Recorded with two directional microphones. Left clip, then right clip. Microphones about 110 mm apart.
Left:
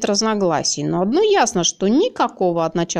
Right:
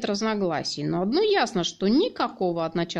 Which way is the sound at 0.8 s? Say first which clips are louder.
Left 5 dB; 35° left (ahead or behind).